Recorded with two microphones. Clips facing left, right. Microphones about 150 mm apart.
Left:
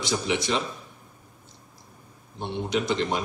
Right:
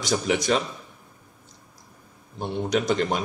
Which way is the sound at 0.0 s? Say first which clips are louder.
Right 3 dB; 45° right (ahead or behind).